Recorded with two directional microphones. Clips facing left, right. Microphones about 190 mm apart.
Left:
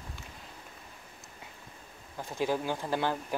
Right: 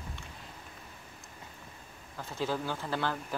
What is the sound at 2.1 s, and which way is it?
Speech, 15° left (ahead or behind).